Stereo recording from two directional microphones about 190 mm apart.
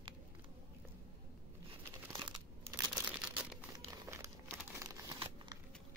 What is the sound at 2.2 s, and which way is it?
Crunch, 20° right (ahead or behind).